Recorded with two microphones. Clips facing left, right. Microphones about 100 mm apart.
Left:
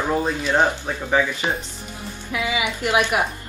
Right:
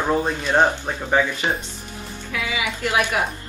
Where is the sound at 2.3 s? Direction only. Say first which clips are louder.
Left 2 dB; 20° left (ahead or behind).